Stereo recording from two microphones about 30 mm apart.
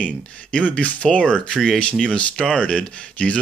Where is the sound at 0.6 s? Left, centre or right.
Left.